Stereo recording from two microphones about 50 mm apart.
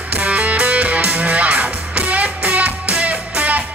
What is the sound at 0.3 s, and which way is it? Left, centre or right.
Music, right.